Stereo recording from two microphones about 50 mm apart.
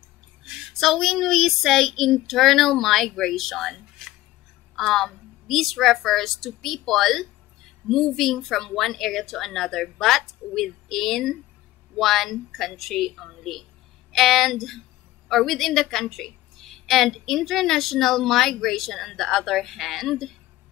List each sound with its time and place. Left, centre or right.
0.7 s a woman's voice: centre